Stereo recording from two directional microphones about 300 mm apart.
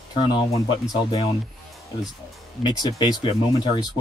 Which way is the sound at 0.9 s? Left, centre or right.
Centre.